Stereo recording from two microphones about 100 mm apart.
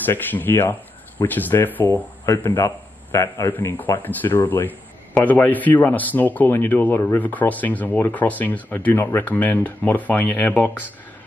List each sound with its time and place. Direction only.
0.0 s a man's voice: 20° left (ahead or behind)
3.5 s a man's voice: 20° left (ahead or behind)